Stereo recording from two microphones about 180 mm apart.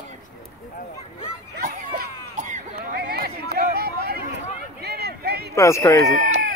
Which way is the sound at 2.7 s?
60° right (ahead or behind).